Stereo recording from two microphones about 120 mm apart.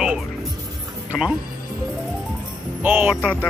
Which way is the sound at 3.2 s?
10° left (ahead or behind).